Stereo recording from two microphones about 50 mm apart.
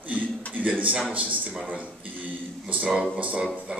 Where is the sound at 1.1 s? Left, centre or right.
Right.